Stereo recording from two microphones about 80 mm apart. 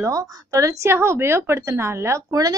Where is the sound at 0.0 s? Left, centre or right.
Right.